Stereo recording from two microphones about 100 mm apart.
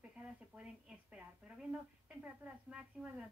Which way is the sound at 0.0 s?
10° right (ahead or behind).